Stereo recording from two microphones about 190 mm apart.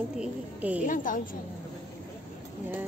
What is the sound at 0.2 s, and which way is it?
Speech, 5° right (ahead or behind).